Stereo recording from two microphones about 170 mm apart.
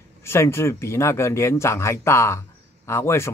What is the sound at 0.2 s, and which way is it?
Speech, 15° left (ahead or behind).